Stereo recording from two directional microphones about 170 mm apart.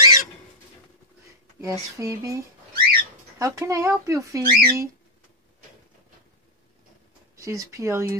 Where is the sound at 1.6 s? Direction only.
20° right (ahead or behind).